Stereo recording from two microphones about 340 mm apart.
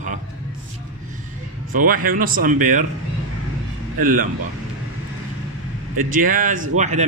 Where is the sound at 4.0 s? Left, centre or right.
Right.